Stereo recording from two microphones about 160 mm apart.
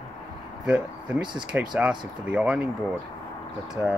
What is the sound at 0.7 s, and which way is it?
Speech, 10° right (ahead or behind).